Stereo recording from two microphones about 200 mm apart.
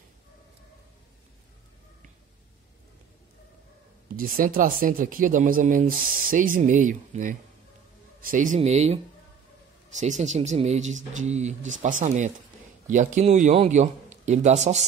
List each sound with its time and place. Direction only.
4.2 s a man's voice: 45° right (ahead or behind)